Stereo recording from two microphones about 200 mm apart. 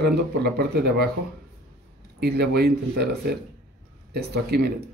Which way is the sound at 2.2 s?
55° right (ahead or behind).